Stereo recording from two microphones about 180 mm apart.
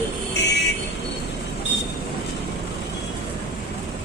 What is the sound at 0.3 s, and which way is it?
Vehicle, 70° left (ahead or behind).